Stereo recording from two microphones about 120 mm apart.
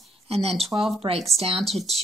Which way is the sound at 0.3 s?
60° right (ahead or behind).